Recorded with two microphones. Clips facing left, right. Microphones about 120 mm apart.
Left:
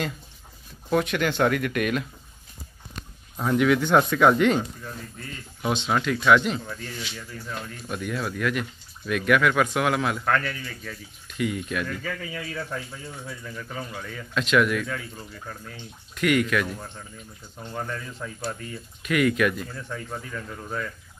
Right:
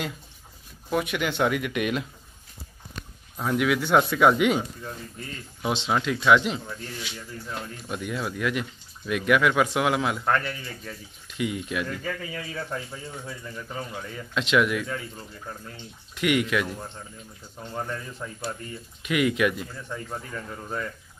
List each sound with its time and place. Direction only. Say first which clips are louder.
0.8 s speech: left 3 dB; 10° right (ahead or behind)
3.3 s speech: left 3 dB; centre (ahead or behind)
5.7 s speech: left 1 dB; 25° right (ahead or behind)